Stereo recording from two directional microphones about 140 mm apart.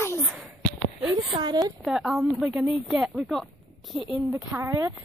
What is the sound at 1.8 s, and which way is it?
Speech, centre (ahead or behind).